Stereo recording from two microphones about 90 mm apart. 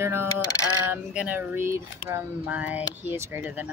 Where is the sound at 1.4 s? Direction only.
30° right (ahead or behind).